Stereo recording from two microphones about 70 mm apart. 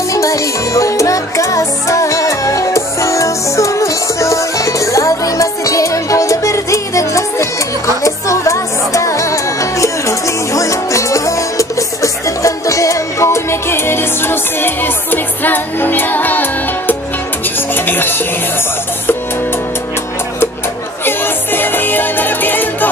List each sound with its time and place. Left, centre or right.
0.1 s music: left
21.0 s music: left